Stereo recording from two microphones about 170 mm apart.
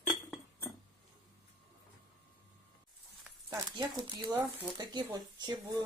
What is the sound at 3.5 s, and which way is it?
Speech, 25° right (ahead or behind).